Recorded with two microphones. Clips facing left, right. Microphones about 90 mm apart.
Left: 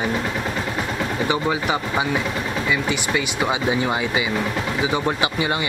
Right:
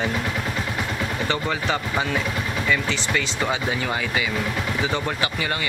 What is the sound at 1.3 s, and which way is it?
Speech, 15° left (ahead or behind).